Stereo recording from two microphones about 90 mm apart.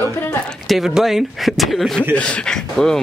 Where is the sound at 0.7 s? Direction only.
5° right (ahead or behind).